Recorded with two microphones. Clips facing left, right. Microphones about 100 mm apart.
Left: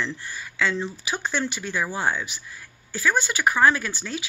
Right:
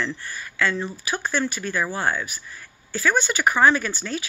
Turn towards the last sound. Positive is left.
turn(degrees=10)  # may be behind; listen again after turning